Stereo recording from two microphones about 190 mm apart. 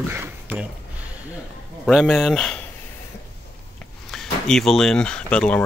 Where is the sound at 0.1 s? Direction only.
10° right (ahead or behind).